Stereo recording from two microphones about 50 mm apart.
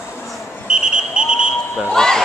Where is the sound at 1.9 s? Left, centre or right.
Centre.